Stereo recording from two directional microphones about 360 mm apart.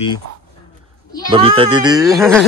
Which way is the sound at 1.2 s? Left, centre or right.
Centre.